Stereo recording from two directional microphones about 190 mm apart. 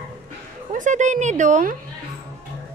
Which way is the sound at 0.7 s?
40° right (ahead or behind).